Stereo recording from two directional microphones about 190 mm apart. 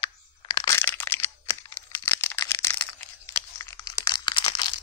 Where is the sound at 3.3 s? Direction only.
15° left (ahead or behind).